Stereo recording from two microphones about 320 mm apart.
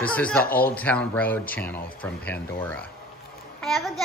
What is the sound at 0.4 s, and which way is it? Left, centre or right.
Speech, left.